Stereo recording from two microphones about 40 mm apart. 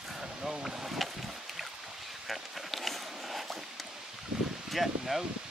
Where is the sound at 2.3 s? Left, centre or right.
Centre.